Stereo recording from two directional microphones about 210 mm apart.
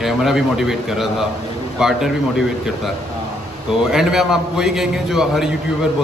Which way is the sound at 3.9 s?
Centre (ahead or behind).